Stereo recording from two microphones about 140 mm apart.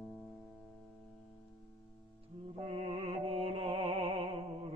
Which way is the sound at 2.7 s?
45° right (ahead or behind).